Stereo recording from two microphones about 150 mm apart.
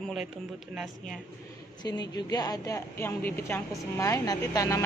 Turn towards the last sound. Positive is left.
turn(degrees=25)  # may be behind; listen again after turning